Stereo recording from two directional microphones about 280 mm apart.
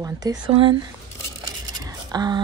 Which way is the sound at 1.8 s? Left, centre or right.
Centre.